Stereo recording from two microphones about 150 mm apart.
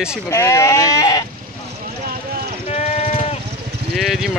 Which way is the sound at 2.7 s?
45° left (ahead or behind).